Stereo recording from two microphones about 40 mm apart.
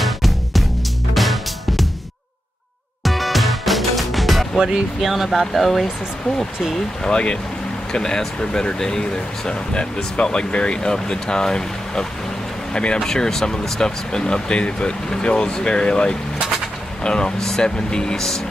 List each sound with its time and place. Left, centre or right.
0.0 s music: centre
3.0 s music: centre
4.6 s speech: centre
7.1 s speech: left
13.0 s speech: centre